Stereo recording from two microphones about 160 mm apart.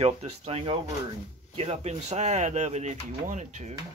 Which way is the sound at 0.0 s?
40° right (ahead or behind).